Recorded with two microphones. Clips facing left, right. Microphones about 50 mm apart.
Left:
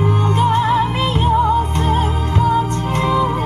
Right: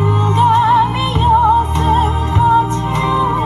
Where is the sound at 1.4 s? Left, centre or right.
Right.